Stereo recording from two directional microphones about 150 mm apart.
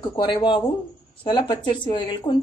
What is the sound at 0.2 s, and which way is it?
A woman's voice, 30° left (ahead or behind).